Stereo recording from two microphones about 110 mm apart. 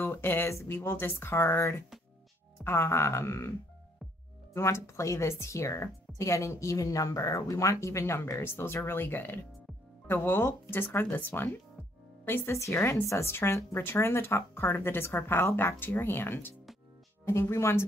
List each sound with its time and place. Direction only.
0.0 s speech: 20° left (ahead or behind)
4.6 s speech: 25° left (ahead or behind)